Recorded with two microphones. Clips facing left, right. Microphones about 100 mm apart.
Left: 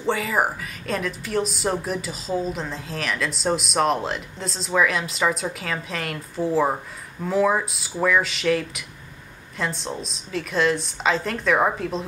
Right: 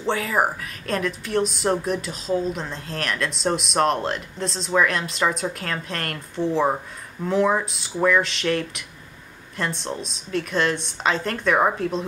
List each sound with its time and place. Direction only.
0.0 s a woman's voice: centre (ahead or behind)